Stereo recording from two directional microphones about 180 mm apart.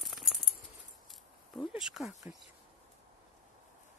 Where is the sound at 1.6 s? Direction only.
5° right (ahead or behind).